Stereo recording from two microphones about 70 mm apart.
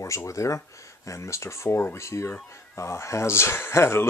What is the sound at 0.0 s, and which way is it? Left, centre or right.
Speech, left.